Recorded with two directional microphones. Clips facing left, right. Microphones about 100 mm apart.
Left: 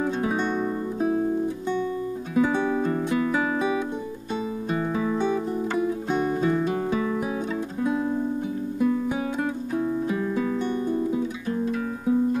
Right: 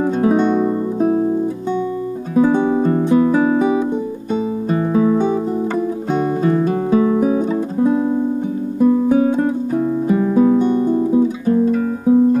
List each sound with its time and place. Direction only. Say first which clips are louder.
0.9 s music: right 7 dB; 50° right (ahead or behind)
2.3 s music: right 8 dB; 35° right (ahead or behind)
5.2 s music: right 7 dB; 35° right (ahead or behind)
6.9 s music: right 11 dB; 35° right (ahead or behind)
8.7 s music: right 11 dB; 30° right (ahead or behind)
10.7 s guitar: right 10 dB; 30° right (ahead or behind)